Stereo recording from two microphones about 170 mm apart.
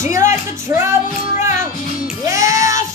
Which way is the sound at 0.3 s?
15° right (ahead or behind).